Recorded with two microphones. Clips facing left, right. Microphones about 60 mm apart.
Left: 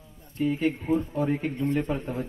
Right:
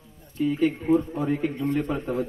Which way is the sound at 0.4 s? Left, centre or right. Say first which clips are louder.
Right 2 dB; left.